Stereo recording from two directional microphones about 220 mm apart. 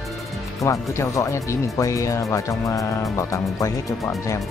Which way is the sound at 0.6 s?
15° left (ahead or behind).